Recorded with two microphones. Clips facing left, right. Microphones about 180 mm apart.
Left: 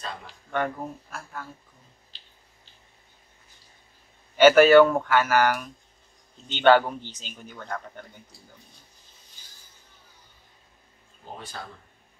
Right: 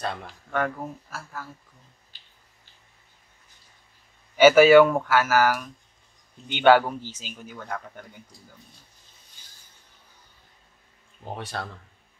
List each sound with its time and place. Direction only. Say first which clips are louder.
0.5 s speech: right 1 dB; centre (ahead or behind)
4.4 s a man's voice: right 1 dB; 10° right (ahead or behind)
11.3 s speech: right 6 dB; 70° right (ahead or behind)